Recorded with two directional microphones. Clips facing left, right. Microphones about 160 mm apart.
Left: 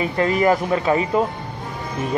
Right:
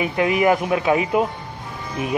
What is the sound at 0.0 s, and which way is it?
Speech, 10° right (ahead or behind).